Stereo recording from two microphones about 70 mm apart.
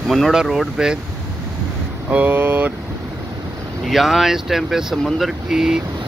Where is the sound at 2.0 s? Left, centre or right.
Right.